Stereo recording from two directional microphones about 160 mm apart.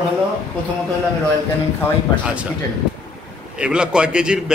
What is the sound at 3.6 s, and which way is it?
Speech, 5° right (ahead or behind).